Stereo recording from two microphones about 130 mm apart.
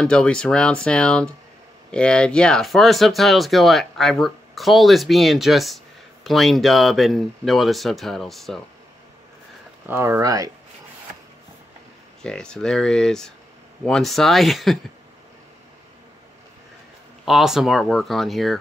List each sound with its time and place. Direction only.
0.0 s speech: 5° left (ahead or behind)
9.8 s speech: 20° right (ahead or behind)
12.2 s speech: 5° left (ahead or behind)
17.2 s speech: 5° right (ahead or behind)